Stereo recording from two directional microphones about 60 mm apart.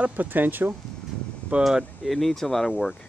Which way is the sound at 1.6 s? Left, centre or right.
Centre.